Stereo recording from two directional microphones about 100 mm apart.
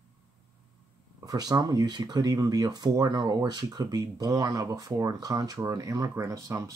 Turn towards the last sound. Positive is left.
turn(degrees=-35)  # may be behind; listen again after turning